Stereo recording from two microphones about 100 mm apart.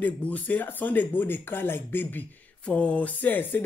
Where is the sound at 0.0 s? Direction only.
15° left (ahead or behind).